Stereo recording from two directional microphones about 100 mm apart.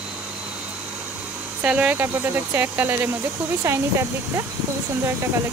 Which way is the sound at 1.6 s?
15° right (ahead or behind).